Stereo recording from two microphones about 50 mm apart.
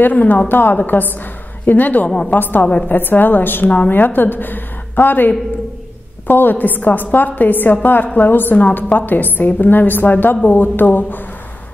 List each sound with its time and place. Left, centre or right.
0.0 s a woman's voice: left
2.0 s a woman's voice: centre
2.3 s a woman's voice: left